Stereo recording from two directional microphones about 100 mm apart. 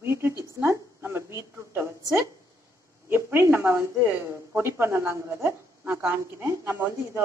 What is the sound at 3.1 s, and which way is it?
A woman's voice, 20° right (ahead or behind).